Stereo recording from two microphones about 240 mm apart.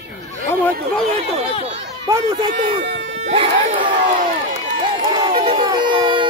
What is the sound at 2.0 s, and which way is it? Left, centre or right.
Speech, centre.